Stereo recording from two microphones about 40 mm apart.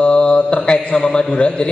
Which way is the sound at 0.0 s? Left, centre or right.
Left.